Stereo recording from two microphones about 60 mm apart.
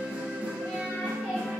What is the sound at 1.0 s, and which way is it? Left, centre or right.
Music, centre.